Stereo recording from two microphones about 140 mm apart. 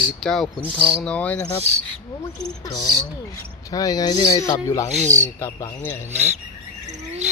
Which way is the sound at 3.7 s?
25° left (ahead or behind).